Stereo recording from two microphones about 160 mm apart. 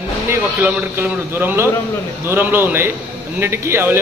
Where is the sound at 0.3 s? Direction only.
10° right (ahead or behind).